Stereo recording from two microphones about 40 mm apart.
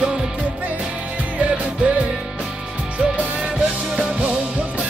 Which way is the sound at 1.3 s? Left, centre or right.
Right.